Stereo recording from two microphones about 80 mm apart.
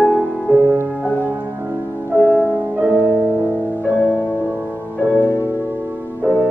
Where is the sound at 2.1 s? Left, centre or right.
Centre.